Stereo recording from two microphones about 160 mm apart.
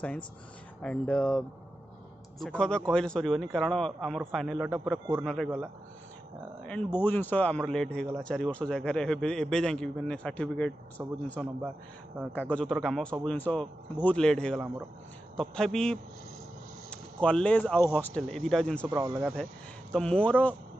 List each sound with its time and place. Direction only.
0.8 s speech: 5° left (ahead or behind)
2.4 s a man's voice: 5° left (ahead or behind)
6.6 s a man's voice: 5° left (ahead or behind)
11.0 s speech: 15° right (ahead or behind)
12.3 s a man's voice: 10° left (ahead or behind)
18.9 s speech: 15° right (ahead or behind)
19.9 s speech: 5° left (ahead or behind)